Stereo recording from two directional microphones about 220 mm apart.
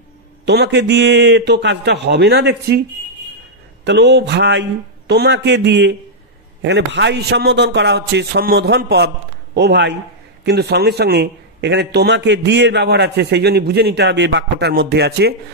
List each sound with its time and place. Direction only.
0.5 s a man's voice: 50° right (ahead or behind)
3.8 s a man's voice: 50° right (ahead or behind)